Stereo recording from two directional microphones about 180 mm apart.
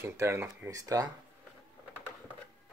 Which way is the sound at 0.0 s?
15° right (ahead or behind).